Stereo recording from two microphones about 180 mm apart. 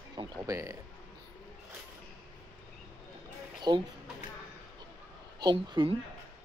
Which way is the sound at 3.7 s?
25° right (ahead or behind).